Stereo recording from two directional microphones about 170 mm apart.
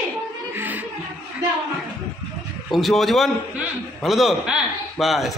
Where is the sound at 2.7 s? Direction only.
Centre (ahead or behind).